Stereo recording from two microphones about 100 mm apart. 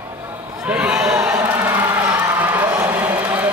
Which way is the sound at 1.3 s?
25° right (ahead or behind).